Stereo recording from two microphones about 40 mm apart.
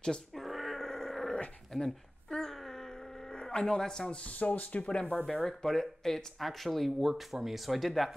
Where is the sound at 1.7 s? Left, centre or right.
Centre.